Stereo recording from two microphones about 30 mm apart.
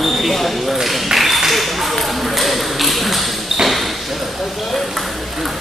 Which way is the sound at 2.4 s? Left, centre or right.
Centre.